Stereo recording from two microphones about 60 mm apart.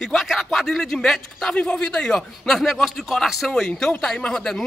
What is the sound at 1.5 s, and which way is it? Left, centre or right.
A man's voice, centre.